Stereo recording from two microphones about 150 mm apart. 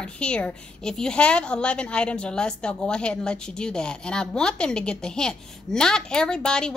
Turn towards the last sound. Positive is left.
turn(degrees=5)  # may be behind; listen again after turning